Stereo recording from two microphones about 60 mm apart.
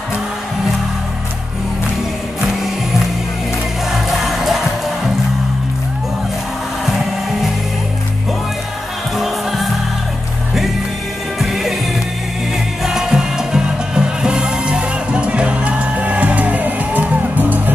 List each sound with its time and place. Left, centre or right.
3.9 s music: centre
11.3 s music: centre
12.8 s music: centre; by 17.7 s right